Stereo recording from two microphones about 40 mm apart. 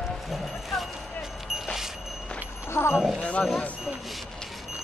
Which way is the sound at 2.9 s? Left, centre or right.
Centre.